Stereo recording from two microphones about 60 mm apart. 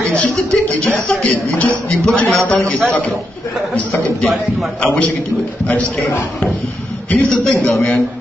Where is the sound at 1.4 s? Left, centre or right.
Left.